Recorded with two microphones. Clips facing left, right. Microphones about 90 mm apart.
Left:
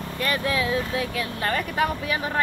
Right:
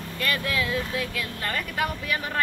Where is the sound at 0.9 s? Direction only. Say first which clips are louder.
Left 3 dB; 30° left (ahead or behind).